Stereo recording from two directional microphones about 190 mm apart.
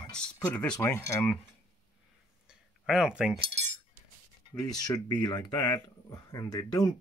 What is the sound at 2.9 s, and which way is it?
Speech, 5° right (ahead or behind).